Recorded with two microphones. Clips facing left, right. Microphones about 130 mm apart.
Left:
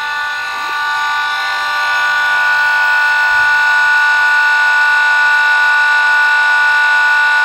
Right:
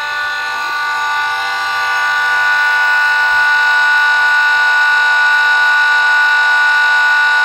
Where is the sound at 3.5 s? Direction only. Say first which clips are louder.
Even; 10° right (ahead or behind).